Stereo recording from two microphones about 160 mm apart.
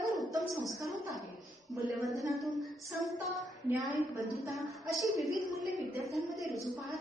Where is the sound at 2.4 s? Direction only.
Centre (ahead or behind).